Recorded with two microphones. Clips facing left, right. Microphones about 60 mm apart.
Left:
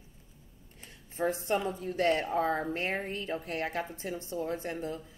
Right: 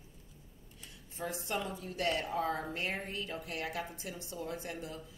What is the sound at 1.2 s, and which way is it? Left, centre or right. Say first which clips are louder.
Speech: left 7 dB; left.